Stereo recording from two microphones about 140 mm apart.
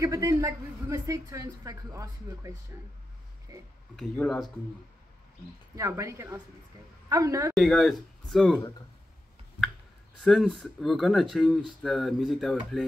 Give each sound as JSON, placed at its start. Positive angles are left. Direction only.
{"t": 0.0, "sound": "a woman's voice", "side_deg": -25}
{"t": 4.2, "sound": "speech", "side_deg": 10}
{"t": 5.8, "sound": "a woman's voice", "side_deg": -20}
{"t": 7.5, "sound": "speech", "side_deg": 0}
{"t": 10.2, "sound": "speech", "side_deg": 0}